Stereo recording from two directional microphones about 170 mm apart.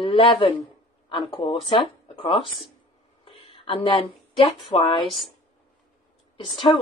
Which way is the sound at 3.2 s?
30° left (ahead or behind).